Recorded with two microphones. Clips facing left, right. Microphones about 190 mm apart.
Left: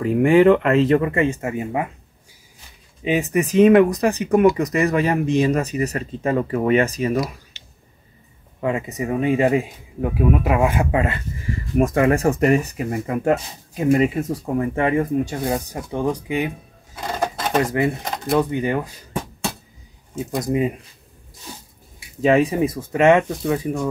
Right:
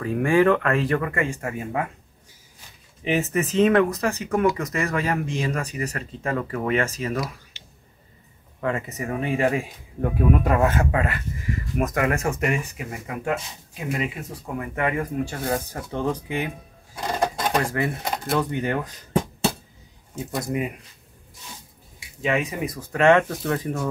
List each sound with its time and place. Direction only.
0.0 s speech: 20° left (ahead or behind)
3.0 s speech: 15° left (ahead or behind)
8.5 s speech: 15° left (ahead or behind)
10.1 s speech: 5° left (ahead or behind); by 14.7 s 40° left (ahead or behind)
14.8 s speech: 25° left (ahead or behind)
16.9 s a sound: 15° right (ahead or behind)
18.0 s speech: 5° right (ahead or behind)
18.3 s speech: 15° left (ahead or behind)
20.2 s speech: 20° left (ahead or behind)
22.2 s speech: 35° left (ahead or behind); by 23.8 s 10° left (ahead or behind)